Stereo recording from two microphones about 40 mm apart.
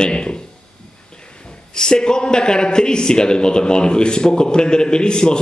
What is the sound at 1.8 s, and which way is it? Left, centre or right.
A man's voice, centre.